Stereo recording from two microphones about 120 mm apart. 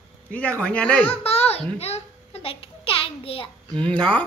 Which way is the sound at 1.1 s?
55° left (ahead or behind).